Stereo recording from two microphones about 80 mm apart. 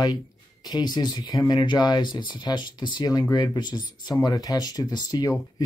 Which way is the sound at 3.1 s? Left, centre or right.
Left.